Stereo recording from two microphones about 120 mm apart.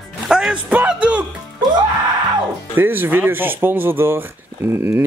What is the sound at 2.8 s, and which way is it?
Speech, 15° right (ahead or behind).